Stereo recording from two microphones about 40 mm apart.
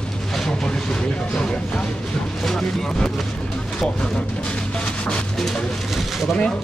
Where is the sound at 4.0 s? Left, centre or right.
Left.